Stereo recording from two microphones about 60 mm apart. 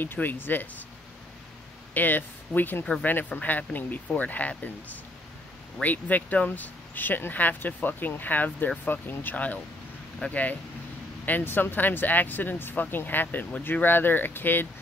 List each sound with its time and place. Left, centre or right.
0.0 s speech: left
2.0 s speech: left
5.8 s speech: left